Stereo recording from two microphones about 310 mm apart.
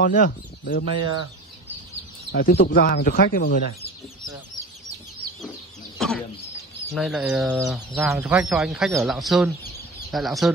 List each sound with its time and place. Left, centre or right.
0.0 s speech: left
2.3 s speech: left
5.9 s a sound: centre
6.9 s speech: centre